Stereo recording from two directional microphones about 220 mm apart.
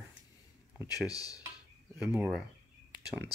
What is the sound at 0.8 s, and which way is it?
Speech, 15° left (ahead or behind).